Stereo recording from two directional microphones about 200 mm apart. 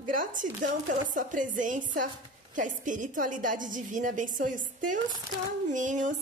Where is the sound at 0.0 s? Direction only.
40° right (ahead or behind).